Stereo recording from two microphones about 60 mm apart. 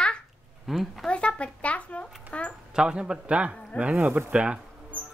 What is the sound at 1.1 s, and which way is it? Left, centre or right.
Speech, centre.